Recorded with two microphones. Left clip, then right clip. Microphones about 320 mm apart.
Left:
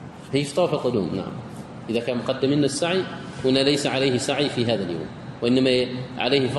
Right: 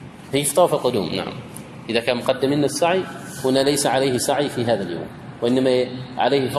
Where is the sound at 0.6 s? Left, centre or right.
Right.